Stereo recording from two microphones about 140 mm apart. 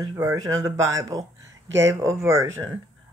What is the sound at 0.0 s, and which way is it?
Speech, 25° right (ahead or behind).